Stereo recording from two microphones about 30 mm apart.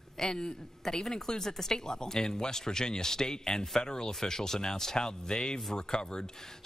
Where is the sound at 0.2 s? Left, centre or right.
Left.